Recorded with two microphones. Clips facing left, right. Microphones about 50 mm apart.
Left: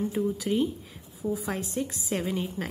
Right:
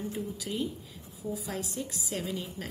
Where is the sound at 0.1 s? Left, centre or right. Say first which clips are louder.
Left 8 dB; left.